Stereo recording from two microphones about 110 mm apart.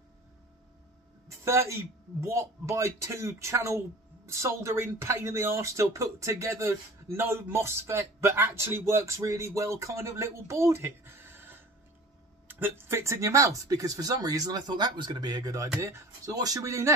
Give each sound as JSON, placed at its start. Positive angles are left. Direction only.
{"t": 1.4, "sound": "speech", "side_deg": -25}